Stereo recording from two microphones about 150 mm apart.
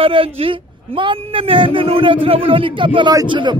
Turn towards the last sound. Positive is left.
turn(degrees=-30)  # may be behind; listen again after turning